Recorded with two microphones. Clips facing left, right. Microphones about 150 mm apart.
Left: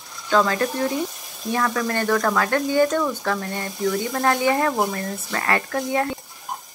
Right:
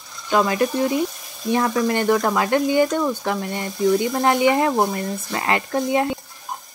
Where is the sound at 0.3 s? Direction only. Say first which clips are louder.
Right 1 dB; 15° right (ahead or behind).